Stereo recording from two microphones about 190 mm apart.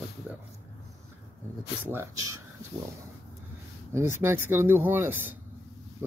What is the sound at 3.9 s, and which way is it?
Speech, 15° right (ahead or behind).